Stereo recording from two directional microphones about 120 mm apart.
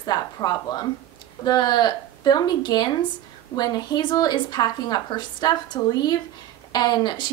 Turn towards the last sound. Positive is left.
turn(degrees=35)  # may be behind; listen again after turning